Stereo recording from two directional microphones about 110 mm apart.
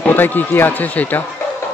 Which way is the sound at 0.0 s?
15° left (ahead or behind).